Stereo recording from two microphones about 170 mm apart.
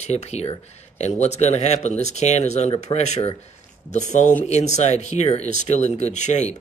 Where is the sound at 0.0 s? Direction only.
40° left (ahead or behind).